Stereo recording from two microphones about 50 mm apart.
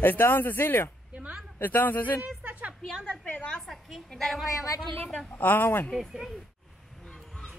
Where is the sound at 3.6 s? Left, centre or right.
Centre.